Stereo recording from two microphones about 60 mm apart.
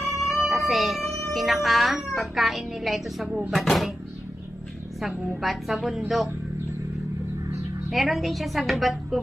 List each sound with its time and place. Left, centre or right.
0.0 s music: left
0.7 s music: centre
1.3 s a child's voice: centre
5.4 s a child's voice: centre
7.9 s a child's voice: centre